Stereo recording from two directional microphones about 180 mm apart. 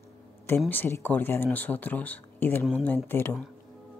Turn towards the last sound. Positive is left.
turn(degrees=10)  # may be behind; listen again after turning